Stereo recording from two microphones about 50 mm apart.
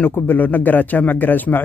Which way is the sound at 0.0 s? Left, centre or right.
Left.